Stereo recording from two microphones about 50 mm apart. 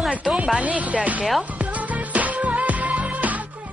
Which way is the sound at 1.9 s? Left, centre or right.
Right.